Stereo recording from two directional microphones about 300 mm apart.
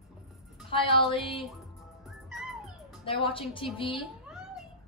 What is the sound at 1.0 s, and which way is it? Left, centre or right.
Speech, centre.